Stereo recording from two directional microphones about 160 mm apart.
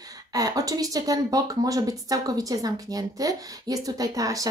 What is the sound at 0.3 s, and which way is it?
Speech, 20° right (ahead or behind).